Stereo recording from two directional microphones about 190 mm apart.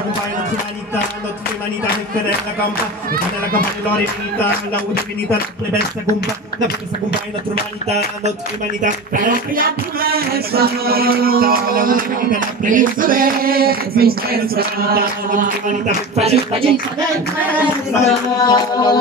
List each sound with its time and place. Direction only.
3.1 s music: 50° right (ahead or behind)
8.8 s music: 45° right (ahead or behind)
16.2 s speech: 30° right (ahead or behind)
17.9 s a sound: 20° left (ahead or behind)